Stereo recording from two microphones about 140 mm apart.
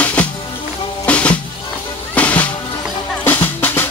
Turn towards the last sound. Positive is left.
turn(degrees=15)  # may be behind; listen again after turning